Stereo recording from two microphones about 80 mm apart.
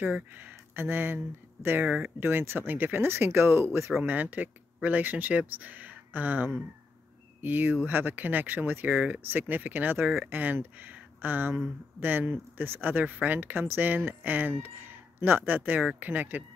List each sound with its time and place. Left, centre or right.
0.0 s speech: right
4.0 s speech: right